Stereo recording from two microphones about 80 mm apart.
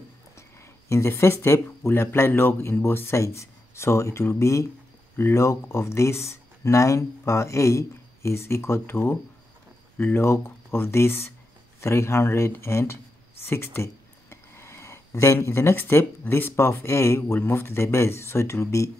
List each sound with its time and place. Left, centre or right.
0.4 s speech: left